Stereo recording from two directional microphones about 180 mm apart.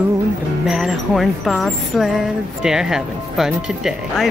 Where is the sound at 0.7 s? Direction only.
5° right (ahead or behind).